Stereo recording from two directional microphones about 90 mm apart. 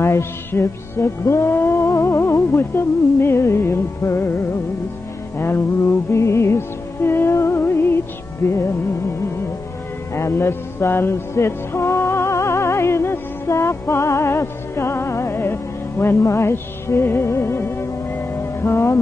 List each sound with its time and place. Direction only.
0.0 s music: 30° left (ahead or behind)
10.1 s music: 30° left (ahead or behind)